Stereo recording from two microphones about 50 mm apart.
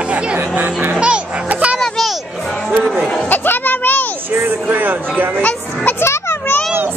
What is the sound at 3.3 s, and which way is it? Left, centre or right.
Chatter, left.